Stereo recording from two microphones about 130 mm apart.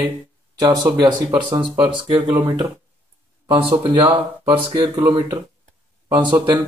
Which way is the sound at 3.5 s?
40° right (ahead or behind).